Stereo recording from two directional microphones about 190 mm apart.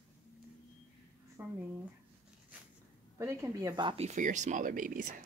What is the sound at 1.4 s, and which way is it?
Speech, 15° right (ahead or behind).